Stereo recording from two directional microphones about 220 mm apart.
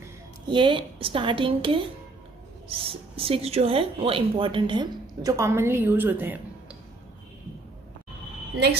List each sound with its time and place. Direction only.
0.0 s a woman's voice: 20° right (ahead or behind)
2.8 s speech: 25° right (ahead or behind); by 6.8 s 10° right (ahead or behind)